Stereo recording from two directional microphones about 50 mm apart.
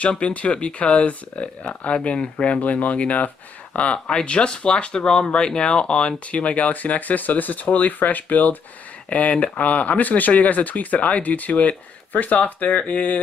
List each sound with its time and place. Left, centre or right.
0.1 s speech: left